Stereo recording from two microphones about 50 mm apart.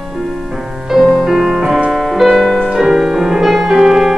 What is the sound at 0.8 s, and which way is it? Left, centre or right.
Music, centre.